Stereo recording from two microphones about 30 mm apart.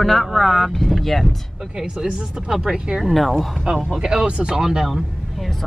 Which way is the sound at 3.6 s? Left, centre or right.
Right.